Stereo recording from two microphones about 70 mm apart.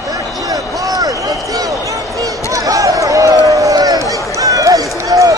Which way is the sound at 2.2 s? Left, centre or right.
Right.